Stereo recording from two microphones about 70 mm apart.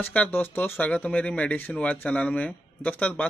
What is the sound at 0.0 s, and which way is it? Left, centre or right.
Speech, left.